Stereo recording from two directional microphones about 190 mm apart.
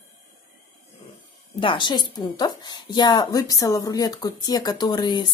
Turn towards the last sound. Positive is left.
turn(degrees=20)  # may be behind; listen again after turning